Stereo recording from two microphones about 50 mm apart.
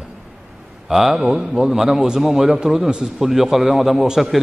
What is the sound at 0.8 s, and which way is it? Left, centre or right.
A man's voice, centre.